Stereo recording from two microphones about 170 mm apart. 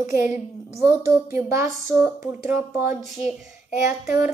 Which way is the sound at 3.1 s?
Centre (ahead or behind).